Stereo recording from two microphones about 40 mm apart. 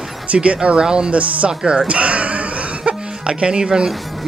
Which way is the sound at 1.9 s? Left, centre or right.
Right.